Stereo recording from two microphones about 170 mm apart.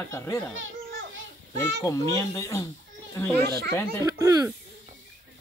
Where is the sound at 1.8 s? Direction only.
20° left (ahead or behind).